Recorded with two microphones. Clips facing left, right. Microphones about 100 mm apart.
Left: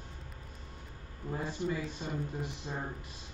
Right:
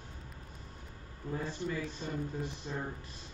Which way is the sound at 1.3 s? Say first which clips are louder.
Left 2 dB; 15° left (ahead or behind).